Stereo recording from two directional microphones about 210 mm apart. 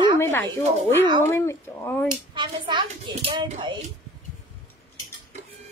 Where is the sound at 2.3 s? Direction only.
20° right (ahead or behind).